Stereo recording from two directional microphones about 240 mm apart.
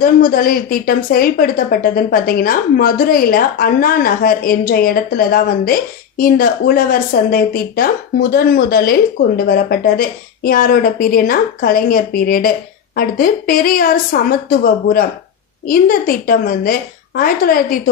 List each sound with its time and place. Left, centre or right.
0.0 s a woman's voice: left